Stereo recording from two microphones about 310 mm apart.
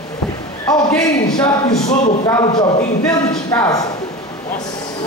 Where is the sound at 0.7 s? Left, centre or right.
Centre.